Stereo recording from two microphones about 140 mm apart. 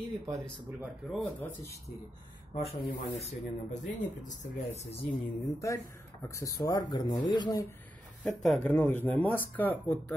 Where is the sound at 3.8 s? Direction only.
65° left (ahead or behind).